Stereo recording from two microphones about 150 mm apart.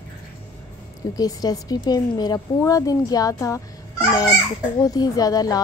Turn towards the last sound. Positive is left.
turn(degrees=25)  # may be behind; listen again after turning